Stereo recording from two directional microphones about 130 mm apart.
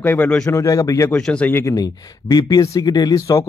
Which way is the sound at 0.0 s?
15° left (ahead or behind).